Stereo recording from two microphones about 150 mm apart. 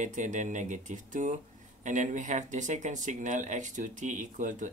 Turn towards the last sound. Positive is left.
turn(degrees=-55)  # may be behind; listen again after turning